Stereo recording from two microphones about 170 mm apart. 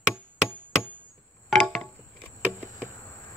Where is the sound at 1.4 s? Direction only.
Centre (ahead or behind).